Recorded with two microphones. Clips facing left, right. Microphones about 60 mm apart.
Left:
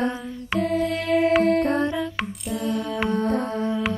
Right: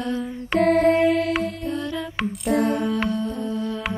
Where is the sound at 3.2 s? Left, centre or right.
Left.